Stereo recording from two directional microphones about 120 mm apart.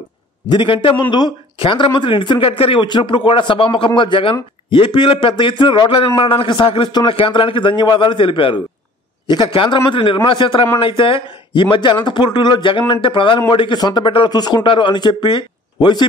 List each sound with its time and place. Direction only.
0.5 s speech: 45° left (ahead or behind)